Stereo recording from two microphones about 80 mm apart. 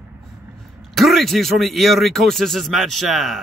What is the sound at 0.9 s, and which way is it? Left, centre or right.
Speech, centre.